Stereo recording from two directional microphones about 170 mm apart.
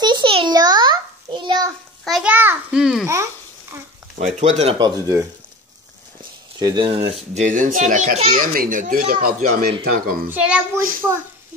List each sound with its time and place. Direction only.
0.0 s a sound: 25° right (ahead or behind)
2.0 s a child's voice: centre (ahead or behind)
4.4 s speech: 40° right (ahead or behind)
4.7 s speech: 20° right (ahead or behind)
6.6 s speech: 25° right (ahead or behind)
7.3 s a child's voice: 45° right (ahead or behind)
8.3 s a child's voice: 55° right (ahead or behind)
10.3 s a child's voice: 10° right (ahead or behind)